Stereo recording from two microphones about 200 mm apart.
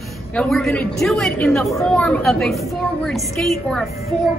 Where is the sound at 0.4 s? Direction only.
Centre (ahead or behind).